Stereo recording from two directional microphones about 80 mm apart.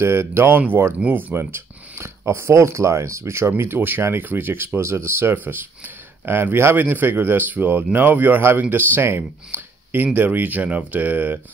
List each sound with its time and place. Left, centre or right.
0.0 s speech: right